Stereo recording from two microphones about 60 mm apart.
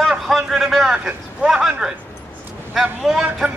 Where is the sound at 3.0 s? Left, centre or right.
Centre.